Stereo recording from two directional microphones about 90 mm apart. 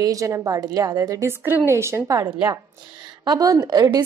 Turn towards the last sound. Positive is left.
turn(degrees=-50)  # may be behind; listen again after turning